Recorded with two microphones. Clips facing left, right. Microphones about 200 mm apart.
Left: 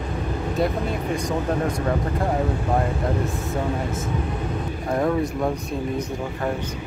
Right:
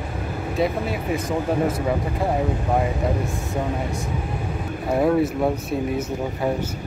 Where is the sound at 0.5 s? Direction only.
5° right (ahead or behind).